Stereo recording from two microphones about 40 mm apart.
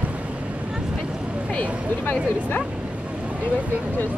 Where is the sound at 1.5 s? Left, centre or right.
Left.